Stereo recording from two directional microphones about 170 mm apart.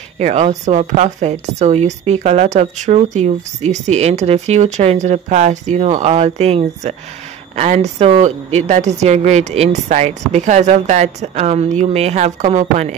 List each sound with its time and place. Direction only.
0.2 s a woman's voice: 45° right (ahead or behind)